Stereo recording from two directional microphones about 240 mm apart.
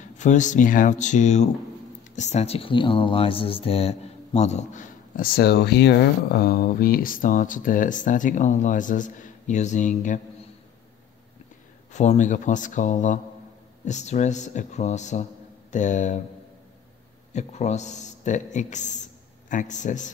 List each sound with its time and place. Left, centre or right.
0.0 s speech: left
11.9 s a man's voice: left
17.3 s a man's voice: left